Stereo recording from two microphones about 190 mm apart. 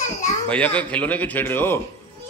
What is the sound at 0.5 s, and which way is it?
Speech, 5° left (ahead or behind).